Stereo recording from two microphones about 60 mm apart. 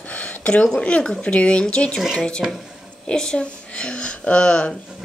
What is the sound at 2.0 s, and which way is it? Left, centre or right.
Speech, centre.